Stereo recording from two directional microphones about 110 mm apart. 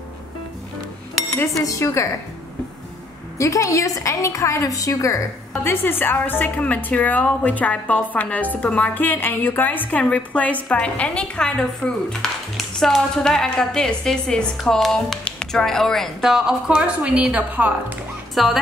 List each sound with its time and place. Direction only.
1.6 s a woman's voice: 30° left (ahead or behind)
3.3 s a woman's voice: 30° left (ahead or behind)
5.6 s a woman's voice: 20° left (ahead or behind); by 17.9 s 15° right (ahead or behind)
18.3 s speech: centre (ahead or behind)